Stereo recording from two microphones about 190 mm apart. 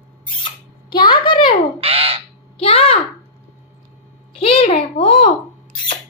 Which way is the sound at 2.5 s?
30° left (ahead or behind).